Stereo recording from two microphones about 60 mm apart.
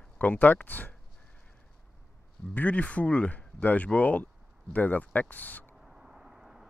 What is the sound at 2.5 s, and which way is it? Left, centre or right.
Speech, left.